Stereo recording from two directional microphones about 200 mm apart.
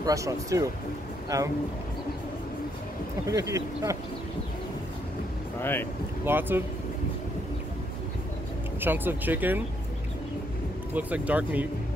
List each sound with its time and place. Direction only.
0.0 s speech: 15° right (ahead or behind)
3.3 s speech: 15° right (ahead or behind)
5.6 s speech: 10° left (ahead or behind)
6.2 s speech: 10° right (ahead or behind)
8.8 s speech: 10° right (ahead or behind)
11.0 s speech: 5° right (ahead or behind)